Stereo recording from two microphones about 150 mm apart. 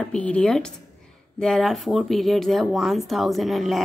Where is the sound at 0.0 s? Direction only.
5° left (ahead or behind).